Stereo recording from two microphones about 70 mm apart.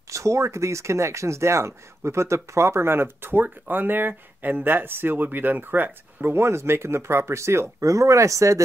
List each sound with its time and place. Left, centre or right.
0.1 s speech: right